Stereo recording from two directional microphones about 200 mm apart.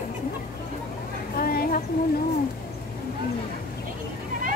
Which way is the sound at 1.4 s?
45° left (ahead or behind).